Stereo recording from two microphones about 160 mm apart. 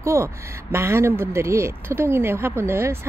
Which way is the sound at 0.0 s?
15° right (ahead or behind).